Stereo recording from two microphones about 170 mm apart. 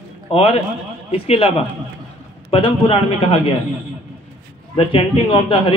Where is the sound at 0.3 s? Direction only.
35° left (ahead or behind).